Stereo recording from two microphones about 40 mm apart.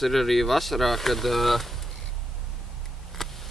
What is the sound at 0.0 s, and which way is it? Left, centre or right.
Speech, centre.